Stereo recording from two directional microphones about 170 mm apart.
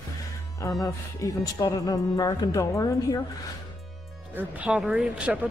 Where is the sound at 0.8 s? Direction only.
20° left (ahead or behind).